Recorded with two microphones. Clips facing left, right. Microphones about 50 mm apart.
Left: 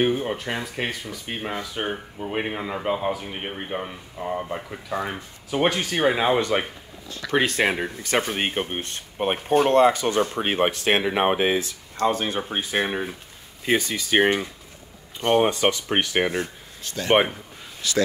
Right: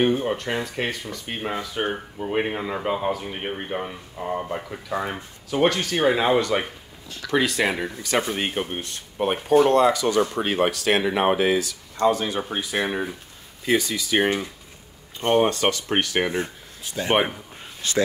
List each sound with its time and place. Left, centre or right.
0.0 s speech: centre
5.5 s speech: centre
7.2 s speech: left
12.8 s speech: centre
13.7 s speech: left
14.1 s speech: left
15.3 s speech: centre
16.8 s speech: centre
17.8 s speech: right